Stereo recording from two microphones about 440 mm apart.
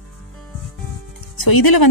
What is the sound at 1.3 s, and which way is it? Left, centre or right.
Speech, left.